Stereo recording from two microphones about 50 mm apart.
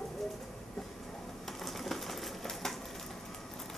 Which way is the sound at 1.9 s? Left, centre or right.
Centre.